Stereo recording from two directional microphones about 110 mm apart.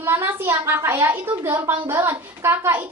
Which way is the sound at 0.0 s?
20° right (ahead or behind).